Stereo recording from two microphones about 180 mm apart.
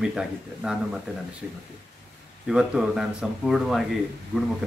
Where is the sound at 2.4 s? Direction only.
5° right (ahead or behind).